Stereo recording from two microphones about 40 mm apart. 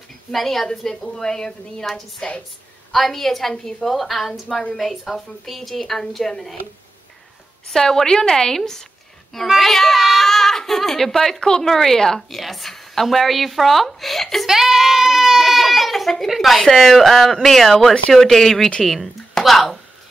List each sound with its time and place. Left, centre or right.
0.3 s speech: centre
7.7 s speech: centre
9.6 s a sound: centre
11.3 s a woman's voice: centre
14.4 s a sound: centre
16.3 s a woman's voice: centre